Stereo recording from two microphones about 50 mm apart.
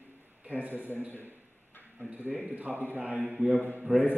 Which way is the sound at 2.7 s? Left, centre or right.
Right.